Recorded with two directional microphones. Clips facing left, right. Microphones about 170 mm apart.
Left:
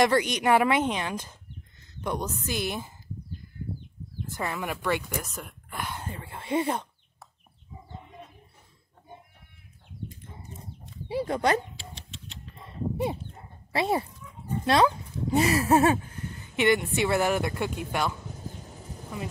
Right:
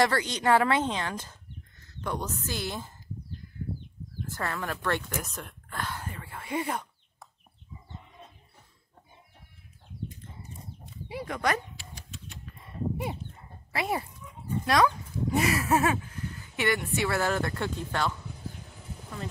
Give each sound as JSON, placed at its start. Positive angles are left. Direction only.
{"t": 0.0, "sound": "speech", "side_deg": 15}
{"t": 4.3, "sound": "speech", "side_deg": 15}
{"t": 11.1, "sound": "a sound", "side_deg": 30}
{"t": 12.9, "sound": "speech", "side_deg": 30}